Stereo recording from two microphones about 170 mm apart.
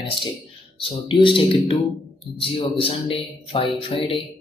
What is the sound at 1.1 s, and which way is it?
Speech, 30° left (ahead or behind).